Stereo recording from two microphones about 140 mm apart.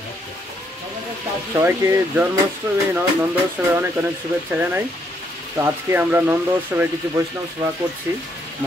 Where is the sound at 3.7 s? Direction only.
15° right (ahead or behind).